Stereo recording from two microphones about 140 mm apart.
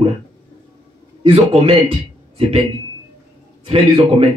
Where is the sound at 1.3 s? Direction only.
45° right (ahead or behind).